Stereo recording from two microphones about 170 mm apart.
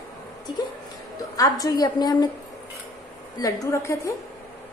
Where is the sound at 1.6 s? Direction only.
20° left (ahead or behind).